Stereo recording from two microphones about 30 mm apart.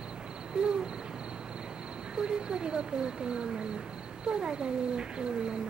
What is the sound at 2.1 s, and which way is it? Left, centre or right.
Speech, right.